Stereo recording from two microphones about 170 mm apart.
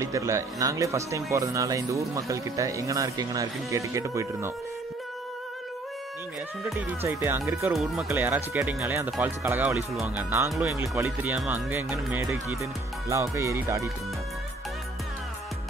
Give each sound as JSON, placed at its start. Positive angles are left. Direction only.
{"t": 0.0, "sound": "speech", "side_deg": -20}
{"t": 6.7, "sound": "speech", "side_deg": -10}
{"t": 7.7, "sound": "speech", "side_deg": 0}
{"t": 8.1, "sound": "speech", "side_deg": -15}